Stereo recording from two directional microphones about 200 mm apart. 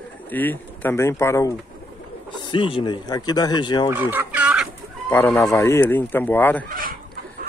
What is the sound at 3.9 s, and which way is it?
Chicken, 10° right (ahead or behind).